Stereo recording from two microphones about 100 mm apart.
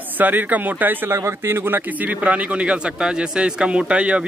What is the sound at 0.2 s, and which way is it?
Speech, 20° right (ahead or behind).